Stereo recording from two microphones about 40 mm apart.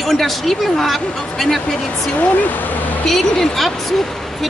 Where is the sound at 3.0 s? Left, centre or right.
Centre.